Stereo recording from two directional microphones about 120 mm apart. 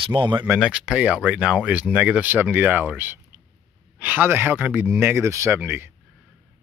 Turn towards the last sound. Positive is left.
turn(degrees=-20)  # may be behind; listen again after turning